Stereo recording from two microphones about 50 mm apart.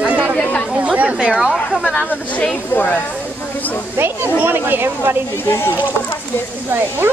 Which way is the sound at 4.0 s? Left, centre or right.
Right.